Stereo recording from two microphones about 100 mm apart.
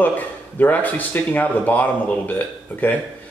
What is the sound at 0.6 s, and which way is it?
Speech, 15° left (ahead or behind).